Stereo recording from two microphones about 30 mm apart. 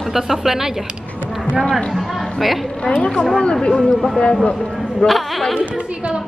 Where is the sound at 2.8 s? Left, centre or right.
Left.